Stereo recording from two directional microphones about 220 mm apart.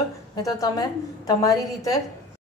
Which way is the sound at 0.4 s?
15° left (ahead or behind).